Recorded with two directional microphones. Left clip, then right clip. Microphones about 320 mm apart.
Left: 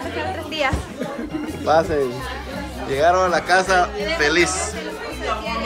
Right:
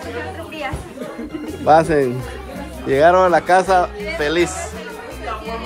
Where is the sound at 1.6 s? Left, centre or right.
Right; by 4.6 s centre.